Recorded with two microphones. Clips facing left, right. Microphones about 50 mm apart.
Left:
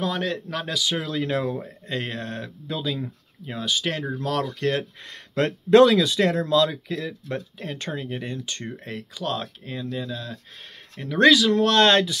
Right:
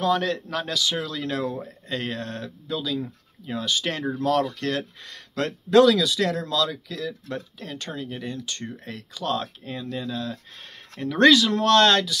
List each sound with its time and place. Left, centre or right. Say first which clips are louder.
0.0 s speech: right 3 dB; centre
0.8 s speech: left 2 dB; centre
4.6 s speech: left 3 dB; centre
9.2 s speech: right 2 dB; centre
11.7 s speech: right 3 dB; centre